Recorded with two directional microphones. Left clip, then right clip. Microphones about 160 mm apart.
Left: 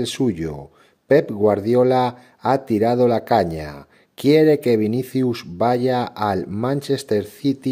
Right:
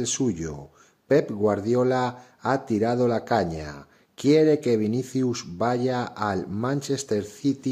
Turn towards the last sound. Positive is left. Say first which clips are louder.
# left 4 dB
turn(degrees=25)  # may be behind; listen again after turning